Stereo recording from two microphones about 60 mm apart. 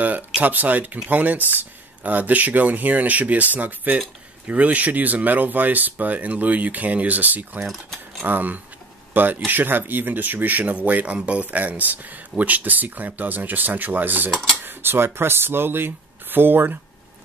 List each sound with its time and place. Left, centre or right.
0.4 s speech: right
7.6 s speech: centre
8.2 s speech: right